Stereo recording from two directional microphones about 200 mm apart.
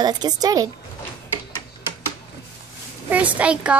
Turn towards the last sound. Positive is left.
turn(degrees=-5)  # may be behind; listen again after turning